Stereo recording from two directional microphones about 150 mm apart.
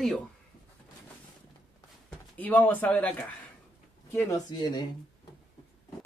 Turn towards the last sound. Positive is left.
turn(degrees=30)  # may be behind; listen again after turning